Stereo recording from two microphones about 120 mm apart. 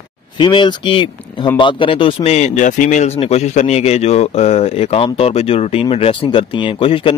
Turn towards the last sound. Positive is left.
turn(degrees=45)  # may be behind; listen again after turning